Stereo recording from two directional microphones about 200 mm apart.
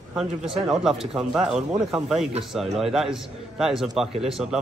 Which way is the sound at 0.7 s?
Centre (ahead or behind).